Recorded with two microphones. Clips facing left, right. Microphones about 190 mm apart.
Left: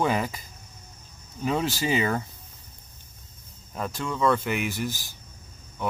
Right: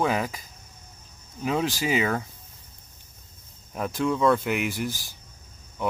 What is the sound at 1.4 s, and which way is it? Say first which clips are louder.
Speech: even; 10° right (ahead or behind).